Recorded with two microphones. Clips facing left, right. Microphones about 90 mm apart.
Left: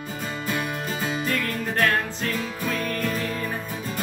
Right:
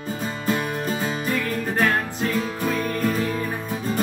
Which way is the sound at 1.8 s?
15° right (ahead or behind).